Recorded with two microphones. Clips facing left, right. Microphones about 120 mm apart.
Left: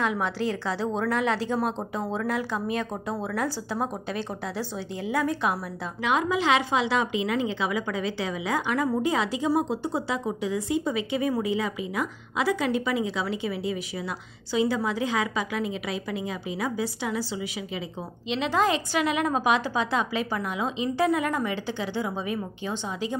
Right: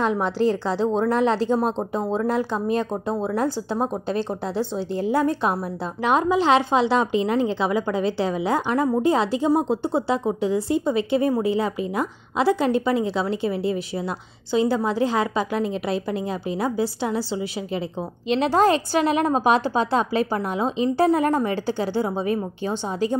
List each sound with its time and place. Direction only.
0.0 s a woman's voice: 35° right (ahead or behind)